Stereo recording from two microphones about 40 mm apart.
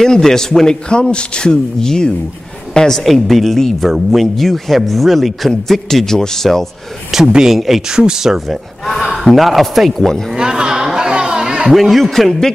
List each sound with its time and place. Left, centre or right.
0.0 s a man's voice: centre
3.0 s a man's voice: centre
7.1 s speech: centre
7.9 s speech: centre
10.3 s a sound: right
11.7 s speech: centre